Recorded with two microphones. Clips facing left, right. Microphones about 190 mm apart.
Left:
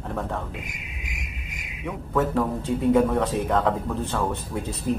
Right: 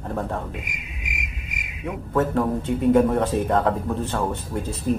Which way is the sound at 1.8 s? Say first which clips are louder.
Right 2 dB; 5° right (ahead or behind).